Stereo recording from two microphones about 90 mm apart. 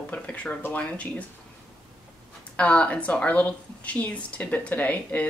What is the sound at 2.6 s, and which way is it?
Speech, 15° left (ahead or behind).